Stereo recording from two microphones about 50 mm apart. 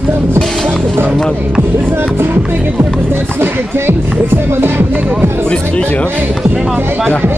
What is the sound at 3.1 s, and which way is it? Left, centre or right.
Music, right.